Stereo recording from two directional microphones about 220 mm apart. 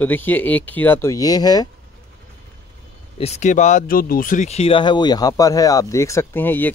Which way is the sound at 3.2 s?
30° left (ahead or behind).